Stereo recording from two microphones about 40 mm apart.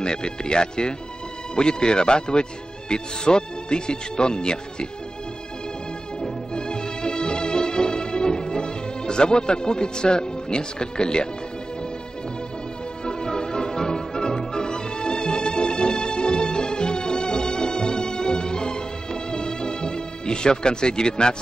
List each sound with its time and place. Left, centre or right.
0.0 s speech: left
6.5 s music: left
13.0 s music: centre